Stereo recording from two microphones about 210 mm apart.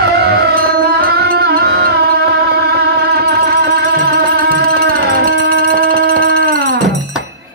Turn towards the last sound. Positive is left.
turn(degrees=-45)  # may be behind; listen again after turning